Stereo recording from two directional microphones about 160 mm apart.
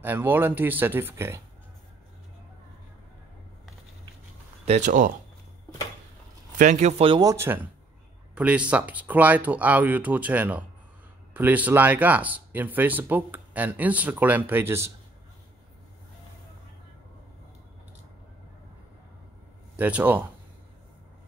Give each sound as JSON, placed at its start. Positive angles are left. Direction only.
{"t": 0.0, "sound": "speech", "side_deg": -15}
{"t": 4.6, "sound": "speech", "side_deg": -50}
{"t": 6.6, "sound": "speech", "side_deg": -50}
{"t": 7.2, "sound": "speech", "side_deg": -20}
{"t": 19.8, "sound": "speech", "side_deg": -10}